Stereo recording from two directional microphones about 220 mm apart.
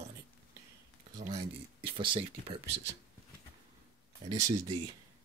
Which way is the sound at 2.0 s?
25° right (ahead or behind).